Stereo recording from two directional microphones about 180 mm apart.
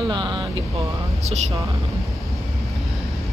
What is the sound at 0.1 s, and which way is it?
Vehicle, 25° right (ahead or behind).